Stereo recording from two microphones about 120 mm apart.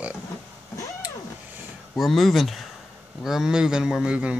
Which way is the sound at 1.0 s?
10° right (ahead or behind).